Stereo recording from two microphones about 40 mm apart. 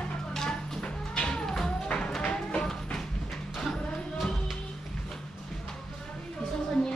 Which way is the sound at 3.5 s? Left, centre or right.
Centre.